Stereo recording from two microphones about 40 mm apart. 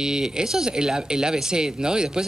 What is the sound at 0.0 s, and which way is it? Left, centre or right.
Speech, centre.